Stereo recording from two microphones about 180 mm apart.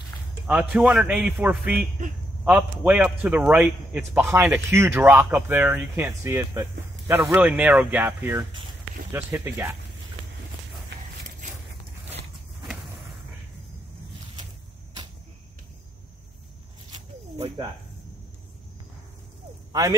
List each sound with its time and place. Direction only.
0.5 s a man's voice: 5° right (ahead or behind)
10.9 s a sound: 85° right
19.7 s speech: 20° right (ahead or behind)